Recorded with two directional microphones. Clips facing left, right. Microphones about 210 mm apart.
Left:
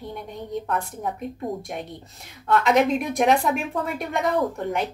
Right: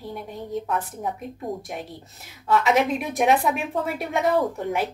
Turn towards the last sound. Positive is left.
turn(degrees=0)  # may be behind; listen again after turning